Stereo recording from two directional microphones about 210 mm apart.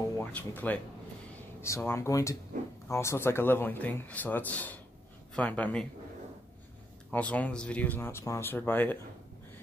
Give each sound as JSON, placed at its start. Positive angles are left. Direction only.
{"t": 0.2, "sound": "speech", "side_deg": 10}
{"t": 1.8, "sound": "speech", "side_deg": 10}
{"t": 2.5, "sound": "a sound", "side_deg": -35}
{"t": 2.9, "sound": "speech", "side_deg": 15}
{"t": 7.1, "sound": "speech", "side_deg": 5}